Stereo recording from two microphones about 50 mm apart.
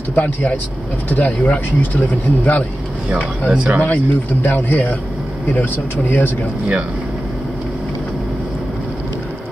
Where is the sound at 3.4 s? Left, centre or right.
Centre.